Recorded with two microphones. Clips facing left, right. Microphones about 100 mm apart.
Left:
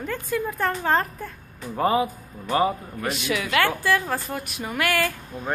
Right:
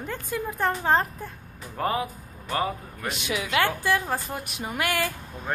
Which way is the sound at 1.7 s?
5° left (ahead or behind).